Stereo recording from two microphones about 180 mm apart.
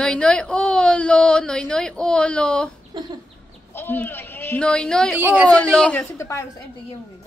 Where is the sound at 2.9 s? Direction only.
25° right (ahead or behind).